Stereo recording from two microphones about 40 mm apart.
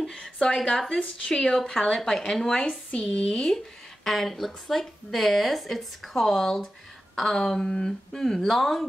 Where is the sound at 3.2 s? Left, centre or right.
Centre.